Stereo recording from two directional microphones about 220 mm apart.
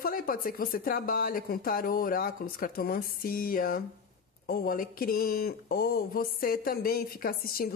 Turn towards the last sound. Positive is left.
turn(degrees=40)  # may be behind; listen again after turning